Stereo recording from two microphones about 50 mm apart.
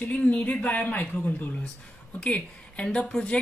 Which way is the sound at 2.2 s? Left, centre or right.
Left.